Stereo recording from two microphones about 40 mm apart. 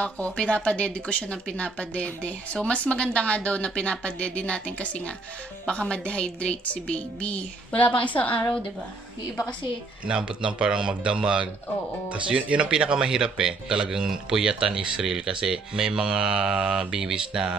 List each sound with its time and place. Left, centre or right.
0.0 s speech: left
10.0 s speech: right